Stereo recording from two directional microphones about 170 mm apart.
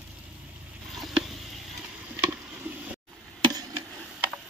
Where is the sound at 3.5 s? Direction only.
25° right (ahead or behind).